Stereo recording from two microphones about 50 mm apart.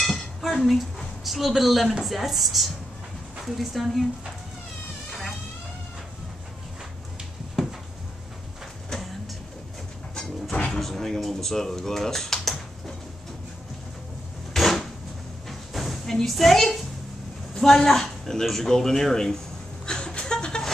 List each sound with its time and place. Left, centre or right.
0.4 s a woman's voice: centre
7.6 s a sound: centre
10.7 s speech: centre
14.5 s drawer open or close: centre
15.7 s a sound: centre
16.3 s a woman's voice: centre
19.9 s vehicle: centre